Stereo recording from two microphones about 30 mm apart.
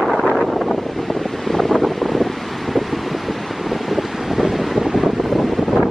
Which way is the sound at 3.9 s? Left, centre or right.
Centre.